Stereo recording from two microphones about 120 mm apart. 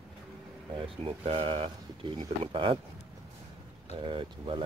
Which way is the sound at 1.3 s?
50° right (ahead or behind).